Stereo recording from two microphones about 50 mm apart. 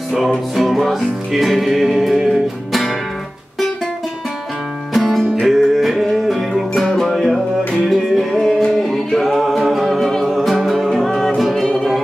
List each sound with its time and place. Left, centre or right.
0.6 s music: centre
4.9 s music: centre